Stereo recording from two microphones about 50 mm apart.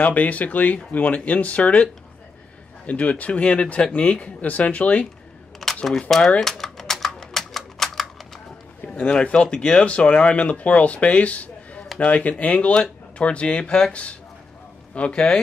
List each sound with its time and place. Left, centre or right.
0.0 s speech: left
2.9 s speech: left
5.9 s speech: centre
6.4 s typing: centre
9.1 s speech: left
15.0 s speech: centre